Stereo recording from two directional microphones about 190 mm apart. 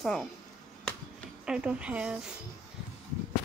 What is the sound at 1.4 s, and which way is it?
Speech, 5° right (ahead or behind).